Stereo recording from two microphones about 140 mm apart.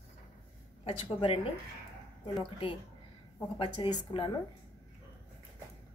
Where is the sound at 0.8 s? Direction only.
45° left (ahead or behind).